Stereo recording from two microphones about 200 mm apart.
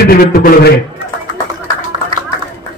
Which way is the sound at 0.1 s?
50° left (ahead or behind).